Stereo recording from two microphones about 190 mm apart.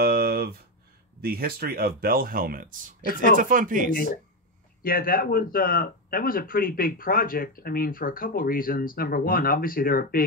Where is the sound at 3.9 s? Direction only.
50° left (ahead or behind).